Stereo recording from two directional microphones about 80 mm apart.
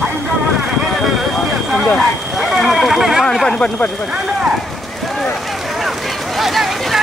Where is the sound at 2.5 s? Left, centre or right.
Centre.